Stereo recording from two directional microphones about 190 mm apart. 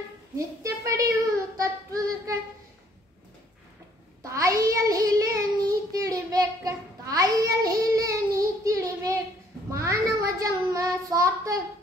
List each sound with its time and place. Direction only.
0.6 s a sound: 15° right (ahead or behind)
1.6 s child singing: 15° right (ahead or behind)
4.2 s child singing: 15° right (ahead or behind)